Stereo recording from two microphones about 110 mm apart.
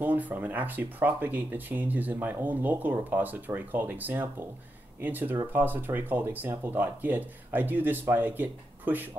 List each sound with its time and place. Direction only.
0.0 s speech: 15° right (ahead or behind)